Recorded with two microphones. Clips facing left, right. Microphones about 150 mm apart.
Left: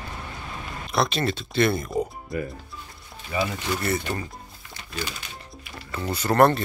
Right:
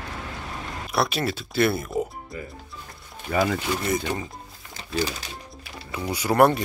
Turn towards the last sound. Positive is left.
turn(degrees=-10)  # may be behind; listen again after turning